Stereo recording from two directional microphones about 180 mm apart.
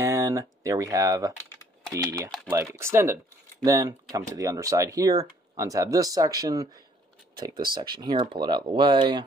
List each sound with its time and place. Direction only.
0.0 s speech: 15° right (ahead or behind)